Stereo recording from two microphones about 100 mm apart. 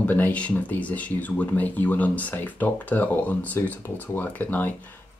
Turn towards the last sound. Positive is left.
turn(degrees=15)  # may be behind; listen again after turning